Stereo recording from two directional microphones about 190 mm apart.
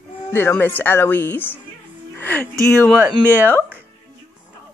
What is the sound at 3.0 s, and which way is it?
Speech, 10° right (ahead or behind).